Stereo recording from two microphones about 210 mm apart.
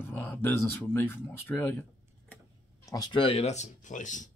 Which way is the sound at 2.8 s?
20° left (ahead or behind).